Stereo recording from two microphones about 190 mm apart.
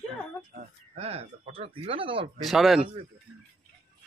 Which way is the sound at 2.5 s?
Centre (ahead or behind).